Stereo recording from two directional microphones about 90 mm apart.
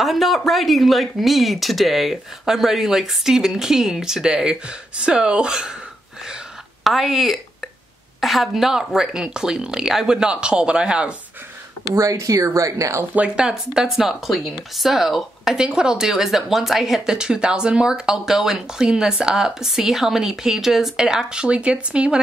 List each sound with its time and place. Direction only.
0.0 s a woman's voice: centre (ahead or behind)
6.8 s a woman's voice: centre (ahead or behind)
11.9 s speech: 35° right (ahead or behind)
13.1 s a woman's voice: 10° right (ahead or behind)